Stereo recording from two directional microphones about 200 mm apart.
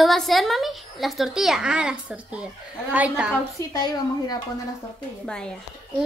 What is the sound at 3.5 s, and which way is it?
Speech, 20° left (ahead or behind).